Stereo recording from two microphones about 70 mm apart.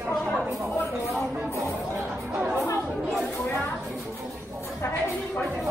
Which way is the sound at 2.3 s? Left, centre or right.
Right.